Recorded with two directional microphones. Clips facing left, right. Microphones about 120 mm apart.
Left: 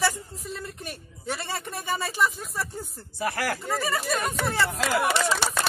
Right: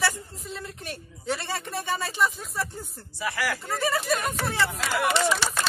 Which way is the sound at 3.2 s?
50° left (ahead or behind).